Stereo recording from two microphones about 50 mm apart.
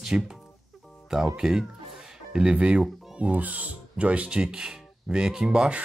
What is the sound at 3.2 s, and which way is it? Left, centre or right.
Speech, right.